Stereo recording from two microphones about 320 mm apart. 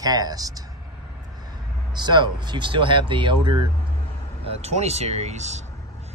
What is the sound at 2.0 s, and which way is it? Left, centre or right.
Speech, centre.